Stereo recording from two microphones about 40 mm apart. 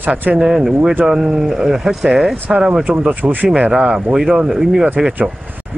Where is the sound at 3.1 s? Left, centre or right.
Right.